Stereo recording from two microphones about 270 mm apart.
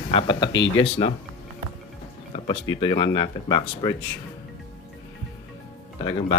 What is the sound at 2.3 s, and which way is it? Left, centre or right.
Speech, centre.